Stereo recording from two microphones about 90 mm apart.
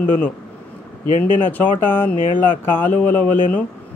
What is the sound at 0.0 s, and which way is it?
Speech, 20° left (ahead or behind).